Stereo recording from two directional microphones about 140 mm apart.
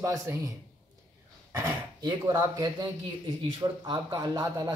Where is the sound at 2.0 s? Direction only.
30° right (ahead or behind).